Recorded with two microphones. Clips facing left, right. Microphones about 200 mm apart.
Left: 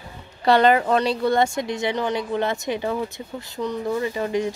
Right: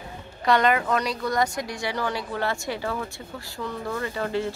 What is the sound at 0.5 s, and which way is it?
A woman's voice, 30° left (ahead or behind).